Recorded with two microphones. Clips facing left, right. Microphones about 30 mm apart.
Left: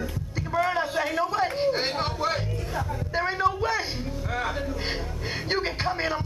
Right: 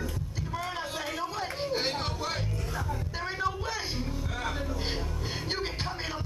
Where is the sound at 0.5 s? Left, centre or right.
Left.